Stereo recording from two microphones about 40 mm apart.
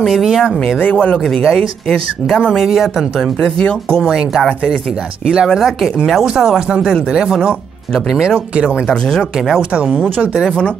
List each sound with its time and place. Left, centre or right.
0.0 s speech: centre
0.9 s speech: left
1.2 s speech: centre
2.5 s speech: centre
3.3 s speech: centre
5.2 s a woman's voice: centre
9.6 s a woman's voice: right